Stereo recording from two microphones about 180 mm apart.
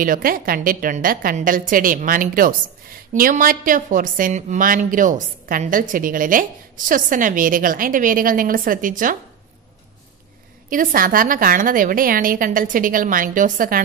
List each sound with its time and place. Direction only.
0.0 s a woman's voice: 50° right (ahead or behind)
10.7 s a woman's voice: 50° right (ahead or behind)